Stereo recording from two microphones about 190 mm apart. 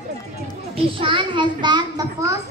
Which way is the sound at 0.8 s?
25° right (ahead or behind).